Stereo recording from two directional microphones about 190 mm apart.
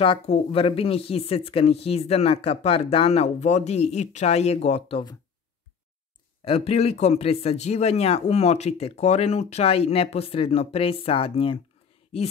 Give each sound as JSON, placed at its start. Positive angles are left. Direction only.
{"t": 0.0, "sound": "a man's voice", "side_deg": 30}
{"t": 6.4, "sound": "a man's voice", "side_deg": 30}